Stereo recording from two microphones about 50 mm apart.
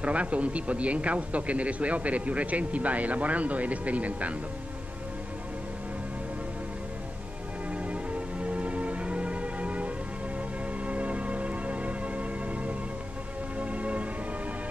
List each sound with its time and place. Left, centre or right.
0.0 s a man's voice: right
7.7 s music: right